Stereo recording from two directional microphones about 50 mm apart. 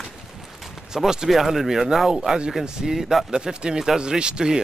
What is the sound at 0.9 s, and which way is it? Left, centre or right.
Speech, centre.